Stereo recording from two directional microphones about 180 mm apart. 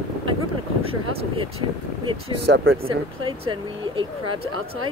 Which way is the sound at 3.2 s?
25° right (ahead or behind).